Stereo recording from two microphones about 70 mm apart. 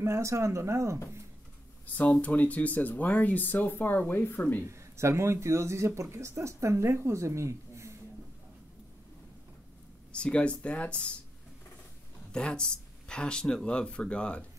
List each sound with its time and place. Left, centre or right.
0.0 s speech: right
1.9 s speech: left
4.6 s speech: right
10.1 s speech: centre
12.3 s speech: centre